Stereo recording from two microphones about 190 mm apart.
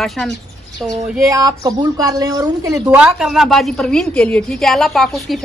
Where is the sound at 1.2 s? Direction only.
15° right (ahead or behind).